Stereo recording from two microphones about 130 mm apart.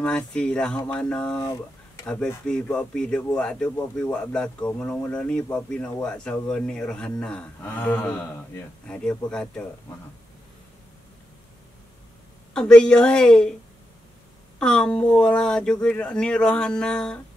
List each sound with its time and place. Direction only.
0.0 s speech: 10° left (ahead or behind)
2.4 s speech: 5° left (ahead or behind)
12.5 s a woman's voice: 5° left (ahead or behind)
14.6 s speech: 5° left (ahead or behind)